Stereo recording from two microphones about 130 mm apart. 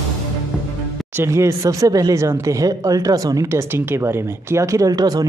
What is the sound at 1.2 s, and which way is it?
Speech, 20° right (ahead or behind).